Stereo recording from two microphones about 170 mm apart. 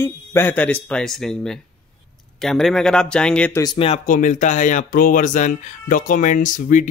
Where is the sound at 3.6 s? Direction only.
35° left (ahead or behind).